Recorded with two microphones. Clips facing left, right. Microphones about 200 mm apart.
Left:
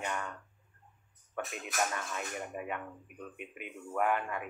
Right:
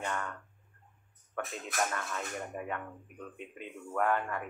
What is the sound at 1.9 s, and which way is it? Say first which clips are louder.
Speech: right 1 dB; 15° left (ahead or behind).